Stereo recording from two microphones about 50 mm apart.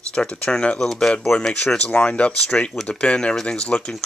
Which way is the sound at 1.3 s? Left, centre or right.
Left.